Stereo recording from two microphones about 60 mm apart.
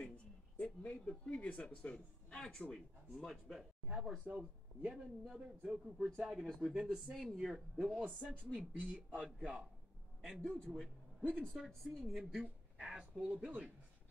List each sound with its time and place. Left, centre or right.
0.6 s speech: centre
3.8 s a man's voice: centre
4.9 s a woman's voice: centre
5.6 s speech: centre
6.4 s a woman's voice: centre
6.7 s speech: centre
8.5 s a man's voice: right
10.2 s a woman's voice: centre
11.2 s speech: centre
11.5 s a woman's voice: centre
12.4 s speech: centre